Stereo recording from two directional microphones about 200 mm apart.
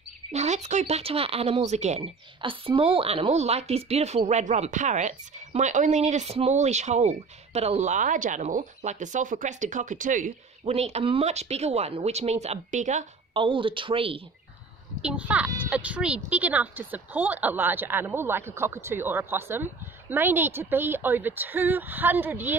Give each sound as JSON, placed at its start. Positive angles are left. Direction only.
{"t": 0.3, "sound": "speech", "side_deg": -35}
{"t": 13.3, "sound": "speech", "side_deg": -25}
{"t": 15.0, "sound": "a woman's voice", "side_deg": -5}